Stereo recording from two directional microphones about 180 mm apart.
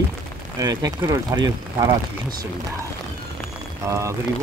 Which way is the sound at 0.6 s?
20° right (ahead or behind).